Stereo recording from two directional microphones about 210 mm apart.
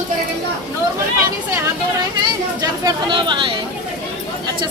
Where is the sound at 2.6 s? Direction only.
20° right (ahead or behind).